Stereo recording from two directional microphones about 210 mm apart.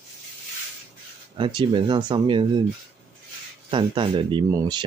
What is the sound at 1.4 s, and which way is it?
Speech, 20° right (ahead or behind).